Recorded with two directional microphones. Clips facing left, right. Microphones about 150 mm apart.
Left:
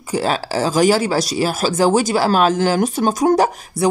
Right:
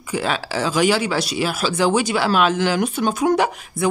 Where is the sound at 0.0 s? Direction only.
40° left (ahead or behind).